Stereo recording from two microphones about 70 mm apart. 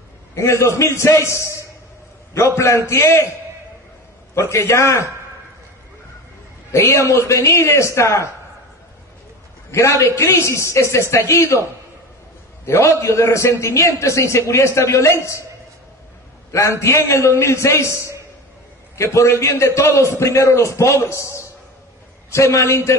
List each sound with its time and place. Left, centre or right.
0.4 s a man's voice: left
4.4 s a man's voice: left
6.7 s a man's voice: left
9.7 s a man's voice: left
12.6 s a man's voice: left
16.5 s a man's voice: left